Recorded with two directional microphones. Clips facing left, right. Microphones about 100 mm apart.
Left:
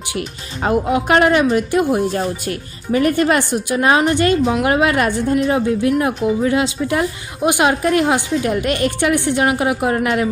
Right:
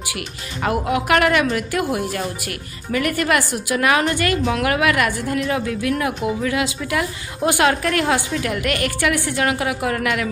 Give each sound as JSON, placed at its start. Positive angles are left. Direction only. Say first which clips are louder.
{"t": 0.7, "sound": "speech", "louder": "left 3 dB", "side_deg": 25}